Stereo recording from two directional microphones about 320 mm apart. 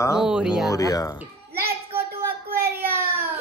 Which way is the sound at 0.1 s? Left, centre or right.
Centre.